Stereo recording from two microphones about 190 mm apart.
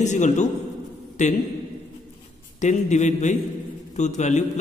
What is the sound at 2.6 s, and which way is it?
A man's voice, 40° left (ahead or behind).